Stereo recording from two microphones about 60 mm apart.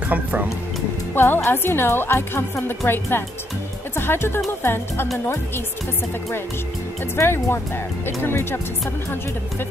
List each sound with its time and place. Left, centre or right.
0.1 s speech: right
1.1 s a woman's voice: left
7.2 s a woman's voice: left